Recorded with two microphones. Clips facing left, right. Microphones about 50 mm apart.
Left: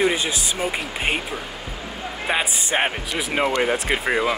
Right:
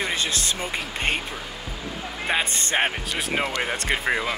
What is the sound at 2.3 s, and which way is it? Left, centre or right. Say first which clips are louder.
Speech: left 2 dB; centre.